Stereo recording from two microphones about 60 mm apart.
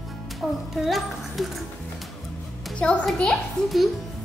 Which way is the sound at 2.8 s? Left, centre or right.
Left.